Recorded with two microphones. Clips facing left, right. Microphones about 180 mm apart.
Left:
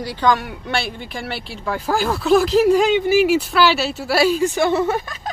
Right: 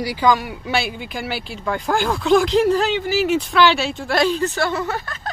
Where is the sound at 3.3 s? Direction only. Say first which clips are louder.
Even; 5° left (ahead or behind).